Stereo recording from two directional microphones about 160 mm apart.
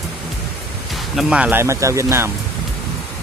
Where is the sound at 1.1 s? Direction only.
5° right (ahead or behind).